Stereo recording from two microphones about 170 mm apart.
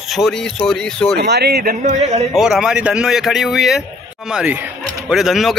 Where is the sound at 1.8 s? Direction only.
45° right (ahead or behind).